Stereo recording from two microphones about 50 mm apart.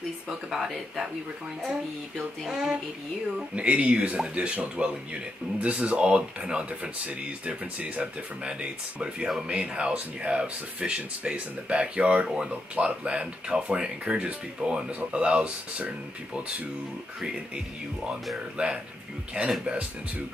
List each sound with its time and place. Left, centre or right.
0.3 s speech: centre
2.1 s speech: centre
3.3 s speech: right
18.6 s speech: right